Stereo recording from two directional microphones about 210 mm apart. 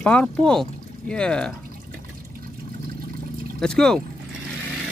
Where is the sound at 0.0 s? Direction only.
5° left (ahead or behind).